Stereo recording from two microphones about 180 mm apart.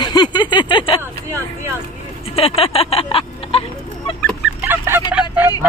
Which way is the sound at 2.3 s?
30° left (ahead or behind).